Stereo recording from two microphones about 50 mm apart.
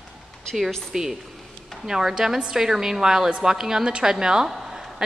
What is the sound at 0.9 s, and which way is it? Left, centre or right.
A woman's voice, centre.